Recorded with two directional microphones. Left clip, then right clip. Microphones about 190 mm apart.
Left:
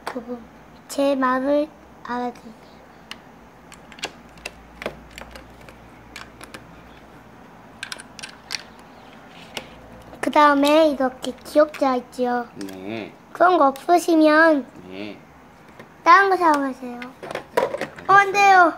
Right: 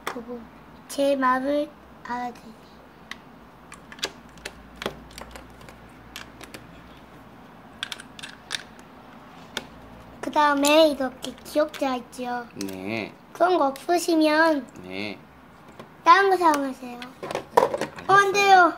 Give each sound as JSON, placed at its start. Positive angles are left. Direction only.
{"t": 1.0, "sound": "a child's voice", "side_deg": 20}
{"t": 10.2, "sound": "a child's voice", "side_deg": 45}
{"t": 10.6, "sound": "a child's voice", "side_deg": 15}
{"t": 11.0, "sound": "a woman's voice", "side_deg": 35}
{"t": 12.5, "sound": "mechanisms", "side_deg": -50}
{"t": 13.3, "sound": "a woman's voice", "side_deg": 30}
{"t": 14.9, "sound": "speech", "side_deg": -45}
{"t": 16.0, "sound": "a child's voice", "side_deg": 30}
{"t": 17.0, "sound": "a sound", "side_deg": 0}
{"t": 18.0, "sound": "a child's voice", "side_deg": 25}